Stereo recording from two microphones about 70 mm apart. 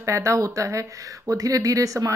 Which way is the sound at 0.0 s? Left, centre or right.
Right.